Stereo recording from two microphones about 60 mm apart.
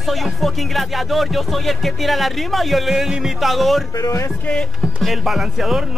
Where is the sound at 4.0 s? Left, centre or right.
Left.